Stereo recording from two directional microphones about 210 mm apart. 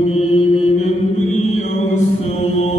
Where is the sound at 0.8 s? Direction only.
35° left (ahead or behind).